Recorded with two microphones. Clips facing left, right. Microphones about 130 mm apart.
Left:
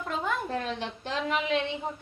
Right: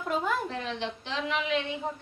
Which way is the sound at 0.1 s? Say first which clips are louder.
Right 2 dB; 5° right (ahead or behind).